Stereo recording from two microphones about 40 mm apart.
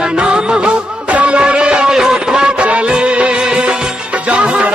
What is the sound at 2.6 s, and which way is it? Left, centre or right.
Music, right.